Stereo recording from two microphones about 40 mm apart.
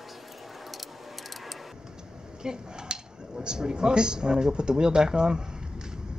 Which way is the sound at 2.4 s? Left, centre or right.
Centre.